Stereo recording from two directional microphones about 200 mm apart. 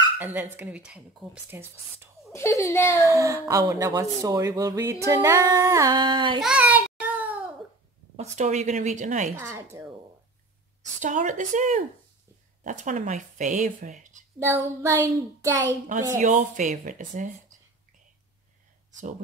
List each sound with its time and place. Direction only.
0.2 s speech: 10° right (ahead or behind)
2.3 s a child's voice: 15° left (ahead or behind)
3.0 s speech: 15° right (ahead or behind)
6.4 s a sound: 5° right (ahead or behind)
8.2 s a woman's voice: 35° right (ahead or behind)
9.3 s speech: 10° right (ahead or behind)
11.0 s a woman's voice: 40° right (ahead or behind)
14.4 s a child's voice: 15° right (ahead or behind)
16.2 s a woman's voice: 40° right (ahead or behind)